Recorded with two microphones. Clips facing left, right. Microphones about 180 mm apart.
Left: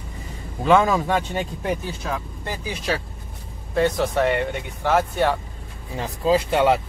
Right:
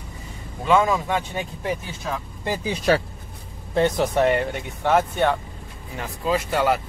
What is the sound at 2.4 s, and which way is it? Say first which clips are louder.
Speech: right 4 dB; 15° right (ahead or behind).